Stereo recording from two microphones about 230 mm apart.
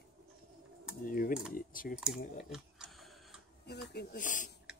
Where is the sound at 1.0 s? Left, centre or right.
Left.